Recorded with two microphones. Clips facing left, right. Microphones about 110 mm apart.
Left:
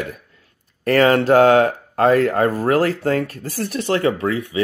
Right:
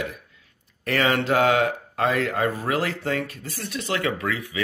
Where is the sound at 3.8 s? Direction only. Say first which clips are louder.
Left 7 dB; 35° left (ahead or behind).